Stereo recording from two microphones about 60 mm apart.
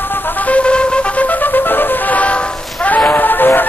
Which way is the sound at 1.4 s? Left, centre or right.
Left.